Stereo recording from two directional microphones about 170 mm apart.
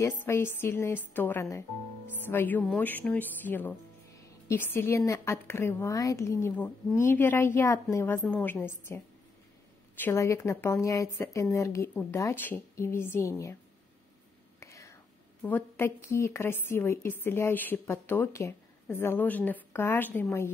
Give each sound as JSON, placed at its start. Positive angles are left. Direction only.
{"t": 0.0, "sound": "a woman's voice", "side_deg": 15}
{"t": 14.6, "sound": "whispering", "side_deg": 15}
{"t": 15.4, "sound": "a woman's voice", "side_deg": 10}